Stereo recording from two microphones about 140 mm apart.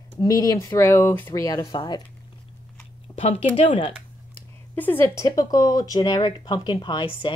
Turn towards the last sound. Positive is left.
turn(degrees=35)  # may be behind; listen again after turning